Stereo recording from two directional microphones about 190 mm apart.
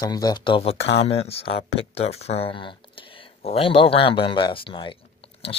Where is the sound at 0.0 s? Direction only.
20° left (ahead or behind).